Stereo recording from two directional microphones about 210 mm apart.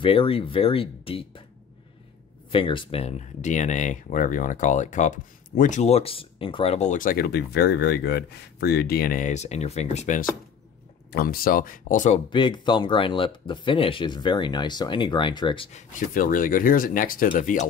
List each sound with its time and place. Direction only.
0.0 s speech: 25° left (ahead or behind)
2.5 s speech: 25° left (ahead or behind)
11.1 s speech: 45° left (ahead or behind)
12.3 s speech: 25° left (ahead or behind)
16.1 s speech: 40° left (ahead or behind)